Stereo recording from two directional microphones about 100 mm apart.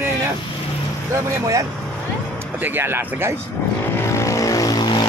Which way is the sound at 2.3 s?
20° right (ahead or behind).